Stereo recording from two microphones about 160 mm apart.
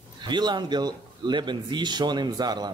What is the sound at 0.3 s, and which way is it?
A man's voice, 30° right (ahead or behind).